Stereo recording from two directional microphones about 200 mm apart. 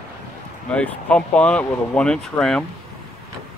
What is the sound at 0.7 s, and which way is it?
Speech, 5° left (ahead or behind).